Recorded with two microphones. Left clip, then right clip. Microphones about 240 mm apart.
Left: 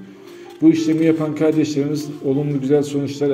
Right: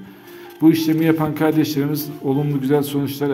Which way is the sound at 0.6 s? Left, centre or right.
Right.